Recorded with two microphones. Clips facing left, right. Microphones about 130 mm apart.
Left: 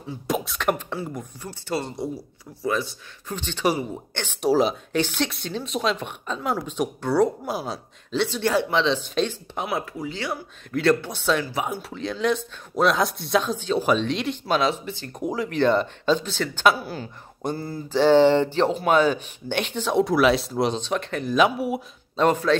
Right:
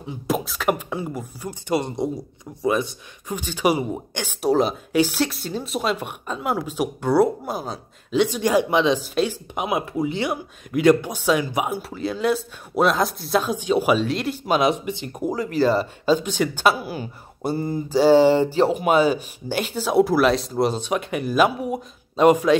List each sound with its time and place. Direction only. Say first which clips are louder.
0.3 s speech: right 2 dB; centre (ahead or behind)
4.5 s speech: even; centre (ahead or behind)
7.4 s speech: even; centre (ahead or behind)
8.1 s speech: right 4 dB; 15° right (ahead or behind)
14.4 s speech: right 4 dB; 15° right (ahead or behind)
15.2 s speech: right 1 dB; centre (ahead or behind)
21.5 s speech: even; 5° left (ahead or behind)
22.1 s speech: right 4 dB; 10° right (ahead or behind)